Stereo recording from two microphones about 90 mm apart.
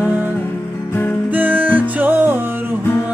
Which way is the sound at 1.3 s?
20° right (ahead or behind).